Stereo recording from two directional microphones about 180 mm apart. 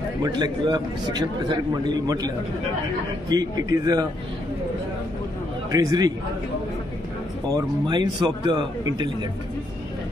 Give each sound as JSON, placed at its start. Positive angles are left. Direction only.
{"t": 0.2, "sound": "a man's voice", "side_deg": -25}
{"t": 5.7, "sound": "a man's voice", "side_deg": -20}
{"t": 7.4, "sound": "a man's voice", "side_deg": -25}